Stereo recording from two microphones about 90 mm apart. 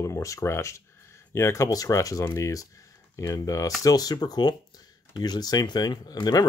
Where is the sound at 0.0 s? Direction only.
35° left (ahead or behind).